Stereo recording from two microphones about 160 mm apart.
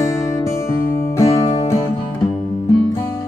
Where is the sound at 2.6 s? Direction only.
20° left (ahead or behind).